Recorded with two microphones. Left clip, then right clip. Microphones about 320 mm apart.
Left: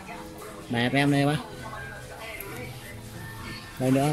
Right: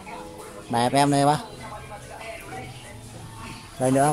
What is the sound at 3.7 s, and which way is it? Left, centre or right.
Speech, right.